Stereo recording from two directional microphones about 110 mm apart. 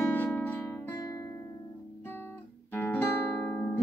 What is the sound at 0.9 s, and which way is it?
Music, 35° left (ahead or behind).